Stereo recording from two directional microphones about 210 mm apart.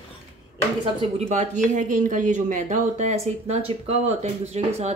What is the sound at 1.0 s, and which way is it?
Speech, 30° right (ahead or behind).